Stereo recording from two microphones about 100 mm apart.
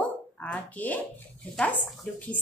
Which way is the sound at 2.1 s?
15° left (ahead or behind).